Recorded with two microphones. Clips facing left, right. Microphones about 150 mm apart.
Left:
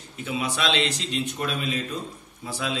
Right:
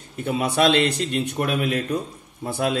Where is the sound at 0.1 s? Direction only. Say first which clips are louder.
Right 5 dB; 50° right (ahead or behind).